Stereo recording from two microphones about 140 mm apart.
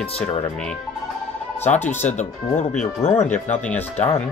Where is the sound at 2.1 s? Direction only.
55° left (ahead or behind).